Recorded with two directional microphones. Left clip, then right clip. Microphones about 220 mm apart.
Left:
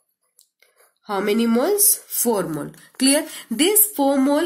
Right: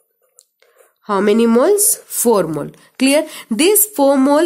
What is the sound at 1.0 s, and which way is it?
A woman's voice, 50° right (ahead or behind).